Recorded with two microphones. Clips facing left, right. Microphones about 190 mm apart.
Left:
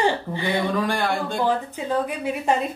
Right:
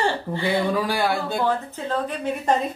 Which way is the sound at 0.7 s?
5° right (ahead or behind).